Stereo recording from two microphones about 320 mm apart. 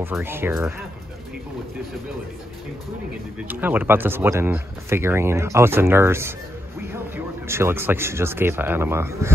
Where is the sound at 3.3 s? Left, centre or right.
Centre.